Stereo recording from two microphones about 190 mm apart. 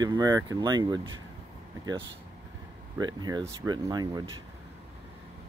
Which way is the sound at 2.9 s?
20° right (ahead or behind).